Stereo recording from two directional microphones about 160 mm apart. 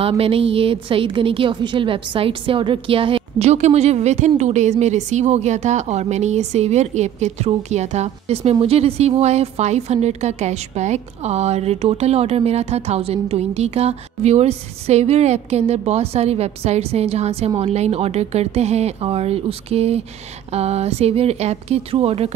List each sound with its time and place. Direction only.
0.0 s a woman's voice: 35° right (ahead or behind)